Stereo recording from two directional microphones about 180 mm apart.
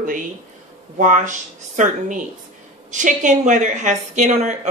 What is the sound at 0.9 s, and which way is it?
A woman's voice, 45° right (ahead or behind).